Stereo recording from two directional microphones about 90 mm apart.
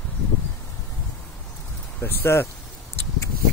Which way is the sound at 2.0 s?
30° left (ahead or behind).